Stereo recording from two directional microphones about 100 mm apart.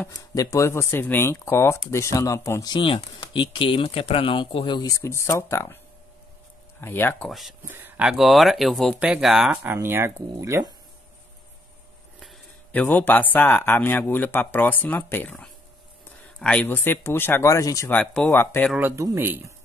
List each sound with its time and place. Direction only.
0.1 s speech: 35° left (ahead or behind)
2.7 s speech: 60° left (ahead or behind)
4.8 s speech: 30° left (ahead or behind)
6.8 s speech: 20° left (ahead or behind)
7.2 s speech: centre (ahead or behind)
7.6 s speech: 20° right (ahead or behind)
8.1 s speech: centre (ahead or behind)
9.6 s speech: 20° right (ahead or behind)
12.7 s speech: 20° left (ahead or behind)
16.6 s speech: 20° left (ahead or behind)
17.8 s speech: 15° left (ahead or behind)
18.8 s speech: 20° right (ahead or behind)